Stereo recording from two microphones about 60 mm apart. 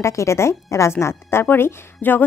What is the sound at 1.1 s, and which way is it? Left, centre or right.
Speech, left.